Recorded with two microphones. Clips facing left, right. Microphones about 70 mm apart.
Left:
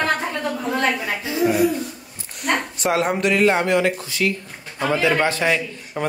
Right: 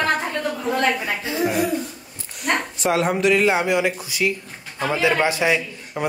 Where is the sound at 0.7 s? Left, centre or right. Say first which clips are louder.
Right 1 dB; centre.